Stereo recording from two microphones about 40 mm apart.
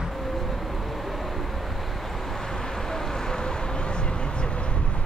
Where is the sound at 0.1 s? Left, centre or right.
Centre.